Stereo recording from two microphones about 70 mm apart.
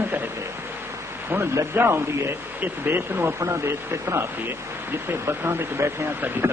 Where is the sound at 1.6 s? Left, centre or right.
Right.